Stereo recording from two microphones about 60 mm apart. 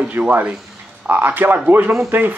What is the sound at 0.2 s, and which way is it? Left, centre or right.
Speech, right.